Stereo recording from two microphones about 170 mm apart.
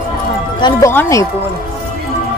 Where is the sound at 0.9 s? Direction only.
15° left (ahead or behind).